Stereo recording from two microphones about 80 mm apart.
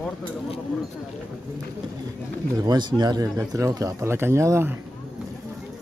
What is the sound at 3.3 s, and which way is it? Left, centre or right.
Speech, right.